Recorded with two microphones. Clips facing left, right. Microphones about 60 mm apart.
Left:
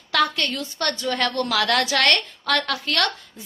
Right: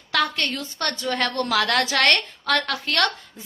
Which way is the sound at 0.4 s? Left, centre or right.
Right.